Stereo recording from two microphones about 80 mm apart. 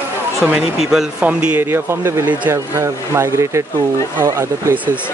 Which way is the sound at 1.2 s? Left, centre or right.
Centre.